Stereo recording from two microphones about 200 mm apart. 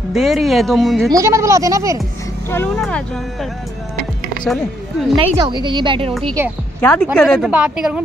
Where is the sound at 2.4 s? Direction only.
10° left (ahead or behind).